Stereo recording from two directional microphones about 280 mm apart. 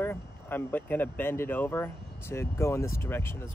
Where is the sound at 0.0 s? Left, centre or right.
Centre.